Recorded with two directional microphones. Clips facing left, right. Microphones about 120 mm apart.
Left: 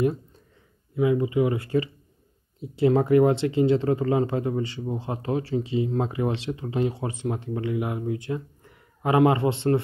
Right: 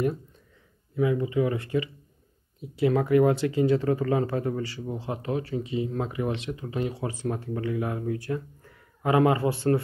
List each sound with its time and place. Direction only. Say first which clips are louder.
0.9 s speech: left 3 dB; 20° left (ahead or behind)